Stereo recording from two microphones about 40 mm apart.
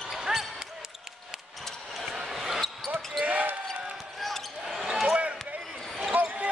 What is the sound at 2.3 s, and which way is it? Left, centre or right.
Basketball bounce, centre.